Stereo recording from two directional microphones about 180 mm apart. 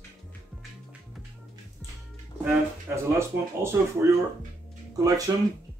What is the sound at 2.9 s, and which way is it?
Speech, 15° right (ahead or behind).